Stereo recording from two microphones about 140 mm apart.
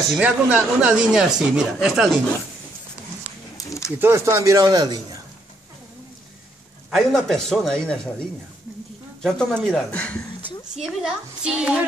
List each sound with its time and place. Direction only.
0.1 s speech: 10° right (ahead or behind)
3.5 s a sound: 20° left (ahead or behind)
4.0 s speech: 15° right (ahead or behind)
6.9 s speech: centre (ahead or behind)
9.2 s speech: 5° left (ahead or behind)
10.8 s speech: 5° right (ahead or behind)